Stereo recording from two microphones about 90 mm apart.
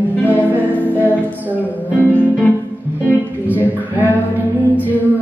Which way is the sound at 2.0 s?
15° left (ahead or behind).